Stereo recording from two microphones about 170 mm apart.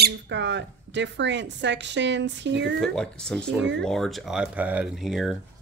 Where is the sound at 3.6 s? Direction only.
90° right.